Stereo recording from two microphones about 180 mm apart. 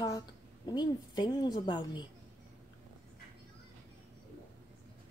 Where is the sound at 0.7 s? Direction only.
25° left (ahead or behind).